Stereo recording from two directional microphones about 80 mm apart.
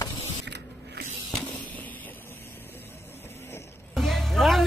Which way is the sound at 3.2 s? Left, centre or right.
Left.